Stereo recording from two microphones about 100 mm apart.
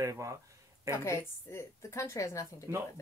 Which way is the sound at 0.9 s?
30° left (ahead or behind).